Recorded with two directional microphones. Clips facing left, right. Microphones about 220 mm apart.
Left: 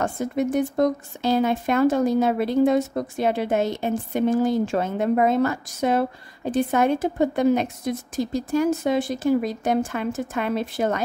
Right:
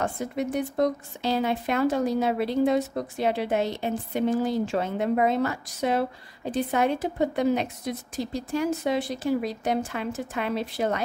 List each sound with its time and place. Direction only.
0.0 s speech: 45° left (ahead or behind)